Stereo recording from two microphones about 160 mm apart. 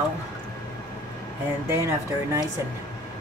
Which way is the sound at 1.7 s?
20° right (ahead or behind).